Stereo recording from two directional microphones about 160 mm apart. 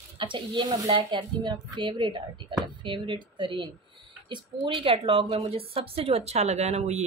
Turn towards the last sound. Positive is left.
turn(degrees=-45)  # may be behind; listen again after turning